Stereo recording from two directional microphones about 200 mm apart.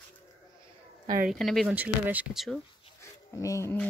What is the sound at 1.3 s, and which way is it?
Speech, centre (ahead or behind).